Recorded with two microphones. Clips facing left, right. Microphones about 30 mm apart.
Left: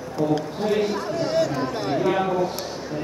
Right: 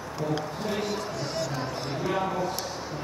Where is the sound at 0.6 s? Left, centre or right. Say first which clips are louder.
Left 10 dB; centre.